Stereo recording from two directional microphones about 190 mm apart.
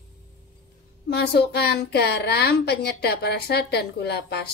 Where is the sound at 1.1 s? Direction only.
60° left (ahead or behind).